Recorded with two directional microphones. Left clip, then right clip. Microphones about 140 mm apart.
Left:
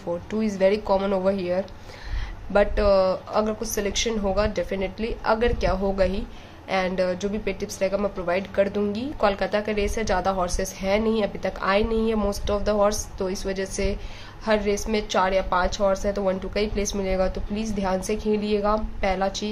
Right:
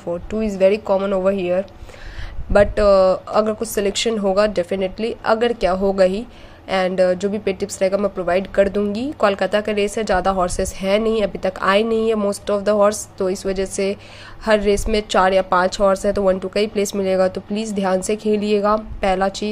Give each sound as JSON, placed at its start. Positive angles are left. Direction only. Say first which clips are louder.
{"t": 0.0, "sound": "speech", "louder": "right 4 dB", "side_deg": -25}
{"t": 2.5, "sound": "speech", "louder": "right 6 dB", "side_deg": -35}